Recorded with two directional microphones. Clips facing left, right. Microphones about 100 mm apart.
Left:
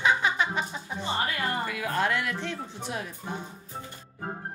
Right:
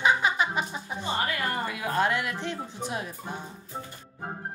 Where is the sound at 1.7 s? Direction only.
25° right (ahead or behind).